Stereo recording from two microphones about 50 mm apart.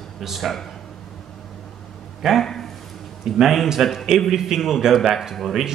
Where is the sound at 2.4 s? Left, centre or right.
Centre.